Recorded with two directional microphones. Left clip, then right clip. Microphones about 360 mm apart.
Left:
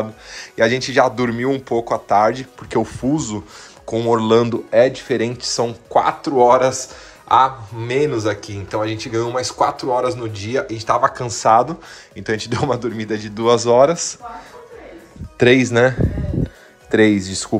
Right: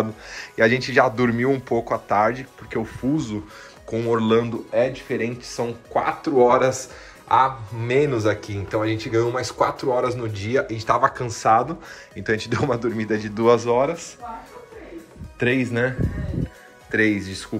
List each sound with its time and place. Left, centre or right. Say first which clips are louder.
0.0 s speech: left 1 dB; centre
4.5 s speech: left 7 dB; left; by 13.6 s centre
13.6 s speech: left 8 dB; centre
15.3 s speech: left 9 dB; centre
16.9 s speech: left 6 dB; centre